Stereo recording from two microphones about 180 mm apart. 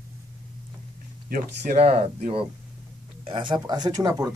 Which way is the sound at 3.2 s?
25° right (ahead or behind).